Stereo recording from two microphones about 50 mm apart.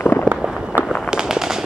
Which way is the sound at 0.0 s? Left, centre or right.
Left.